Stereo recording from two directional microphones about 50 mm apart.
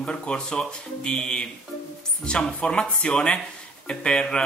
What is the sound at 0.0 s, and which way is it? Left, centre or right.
Speech, centre.